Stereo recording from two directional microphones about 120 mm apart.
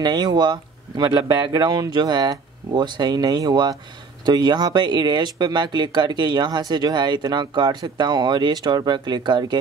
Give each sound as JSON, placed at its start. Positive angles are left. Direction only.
{"t": 0.0, "sound": "speech", "side_deg": -35}